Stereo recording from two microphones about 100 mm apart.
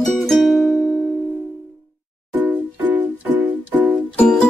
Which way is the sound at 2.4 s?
15° right (ahead or behind).